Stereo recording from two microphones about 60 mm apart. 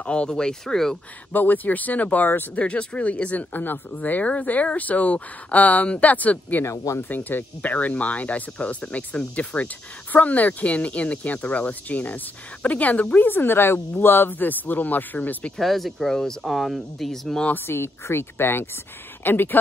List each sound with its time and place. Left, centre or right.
0.0 s speech: centre
1.3 s speech: left
2.6 s speech: left
6.6 s speech: left
7.0 s speech: left
13.2 s speech: left
15.5 s speech: centre
17.6 s speech: left